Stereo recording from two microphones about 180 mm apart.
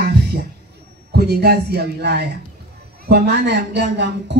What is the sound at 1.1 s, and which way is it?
A man's voice, 65° right (ahead or behind).